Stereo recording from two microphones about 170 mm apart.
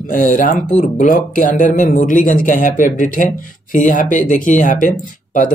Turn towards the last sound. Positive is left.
turn(degrees=50)  # may be behind; listen again after turning